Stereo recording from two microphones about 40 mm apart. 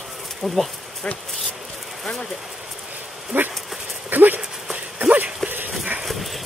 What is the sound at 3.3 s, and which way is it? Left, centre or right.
Dog, right.